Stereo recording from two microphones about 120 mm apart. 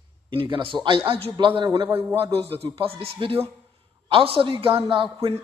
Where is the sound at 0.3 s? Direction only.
50° right (ahead or behind).